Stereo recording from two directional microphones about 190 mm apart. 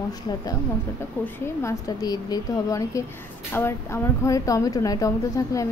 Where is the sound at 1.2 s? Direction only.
15° left (ahead or behind).